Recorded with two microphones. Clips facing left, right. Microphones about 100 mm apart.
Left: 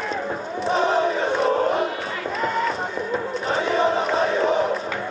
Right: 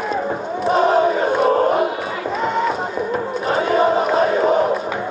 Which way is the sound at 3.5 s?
45° right (ahead or behind).